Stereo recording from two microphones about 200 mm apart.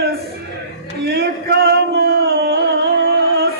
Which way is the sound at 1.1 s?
55° right (ahead or behind).